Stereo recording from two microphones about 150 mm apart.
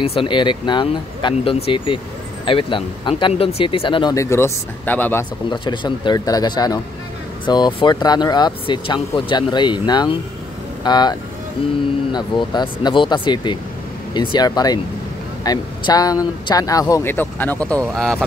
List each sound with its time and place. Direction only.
0.0 s speech: 35° left (ahead or behind)
4.1 s speech: 20° left (ahead or behind)
5.5 s a man's voice: 30° left (ahead or behind); by 18.2 s 5° left (ahead or behind)